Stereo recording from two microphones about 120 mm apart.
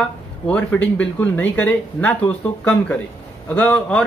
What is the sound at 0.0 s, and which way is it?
A man's voice, 10° left (ahead or behind).